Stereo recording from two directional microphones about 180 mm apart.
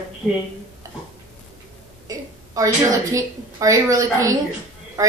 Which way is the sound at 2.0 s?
20° right (ahead or behind).